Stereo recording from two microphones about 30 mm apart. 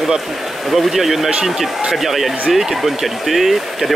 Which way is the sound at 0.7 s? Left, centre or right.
Centre.